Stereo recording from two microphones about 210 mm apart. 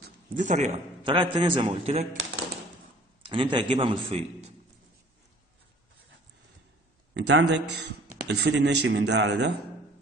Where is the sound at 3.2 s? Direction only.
25° right (ahead or behind).